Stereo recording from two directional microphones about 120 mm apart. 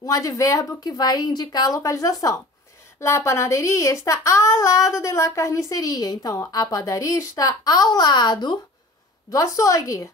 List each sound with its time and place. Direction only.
0.0 s speech: 30° left (ahead or behind)
9.3 s speech: 25° left (ahead or behind)